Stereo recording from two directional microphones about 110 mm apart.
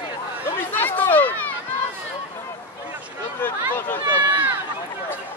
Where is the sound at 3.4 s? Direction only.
20° left (ahead or behind).